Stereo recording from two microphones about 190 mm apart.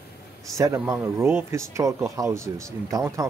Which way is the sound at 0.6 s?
15° right (ahead or behind).